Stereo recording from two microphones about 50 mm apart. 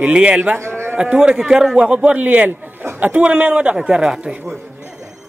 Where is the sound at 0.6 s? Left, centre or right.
Right.